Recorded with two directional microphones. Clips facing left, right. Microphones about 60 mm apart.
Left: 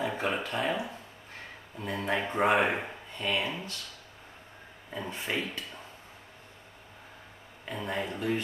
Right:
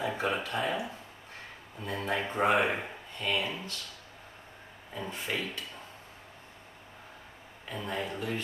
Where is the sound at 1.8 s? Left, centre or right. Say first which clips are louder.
Left 2 dB; left.